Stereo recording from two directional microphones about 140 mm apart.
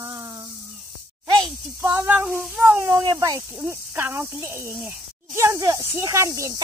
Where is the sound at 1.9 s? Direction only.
15° right (ahead or behind).